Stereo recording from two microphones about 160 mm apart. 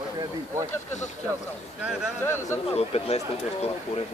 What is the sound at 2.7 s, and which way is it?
Speech, 40° left (ahead or behind).